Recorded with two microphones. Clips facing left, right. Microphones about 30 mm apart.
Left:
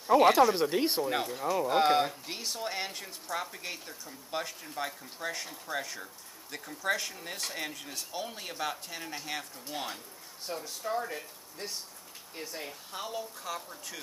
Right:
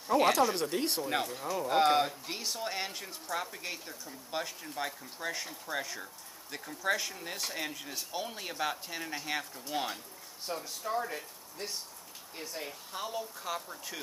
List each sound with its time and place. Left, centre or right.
0.0 s speech: centre
1.0 s speech: centre